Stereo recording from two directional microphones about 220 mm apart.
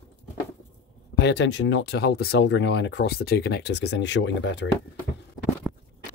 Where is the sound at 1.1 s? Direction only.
50° left (ahead or behind).